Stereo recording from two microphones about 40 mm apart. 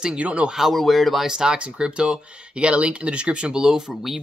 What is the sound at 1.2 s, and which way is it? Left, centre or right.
Speech, centre.